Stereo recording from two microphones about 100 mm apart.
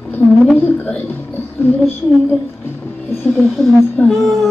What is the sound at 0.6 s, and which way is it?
Speech, 20° left (ahead or behind).